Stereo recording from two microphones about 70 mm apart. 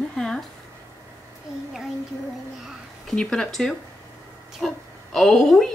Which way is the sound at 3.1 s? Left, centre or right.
Centre.